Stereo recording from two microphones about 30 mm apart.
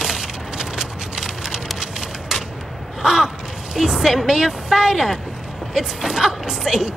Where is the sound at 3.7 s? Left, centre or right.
Centre.